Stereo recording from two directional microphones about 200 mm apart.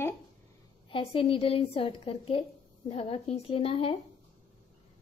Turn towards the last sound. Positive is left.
turn(degrees=30)  # may be behind; listen again after turning